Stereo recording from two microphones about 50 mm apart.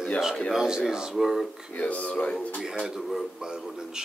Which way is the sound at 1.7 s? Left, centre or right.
Left.